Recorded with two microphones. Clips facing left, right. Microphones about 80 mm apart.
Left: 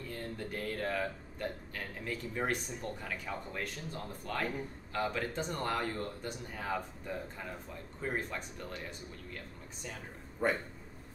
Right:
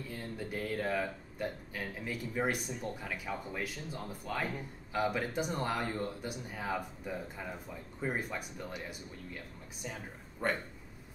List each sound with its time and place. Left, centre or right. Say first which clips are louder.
0.1 s speech: even; centre
10.4 s speech: left 2 dB; centre